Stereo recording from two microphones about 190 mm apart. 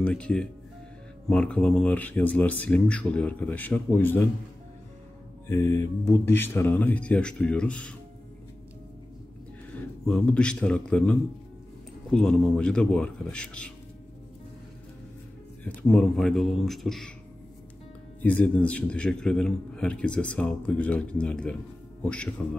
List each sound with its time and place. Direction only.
0.0 s a man's voice: 5° left (ahead or behind)
5.5 s speech: 15° left (ahead or behind)
10.0 s a man's voice: 5° left (ahead or behind)
15.6 s a man's voice: 5° left (ahead or behind)
18.2 s a man's voice: 5° left (ahead or behind)